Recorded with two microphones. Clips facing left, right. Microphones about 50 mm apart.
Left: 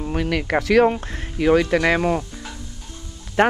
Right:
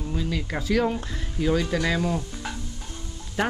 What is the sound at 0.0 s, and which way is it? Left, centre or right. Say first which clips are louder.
Speech: left 6 dB; left.